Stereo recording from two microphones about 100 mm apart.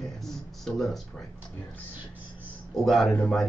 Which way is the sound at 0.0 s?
5° left (ahead or behind).